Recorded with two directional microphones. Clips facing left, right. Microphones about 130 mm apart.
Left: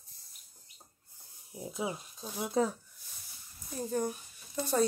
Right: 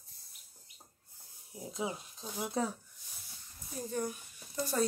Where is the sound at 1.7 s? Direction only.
10° left (ahead or behind).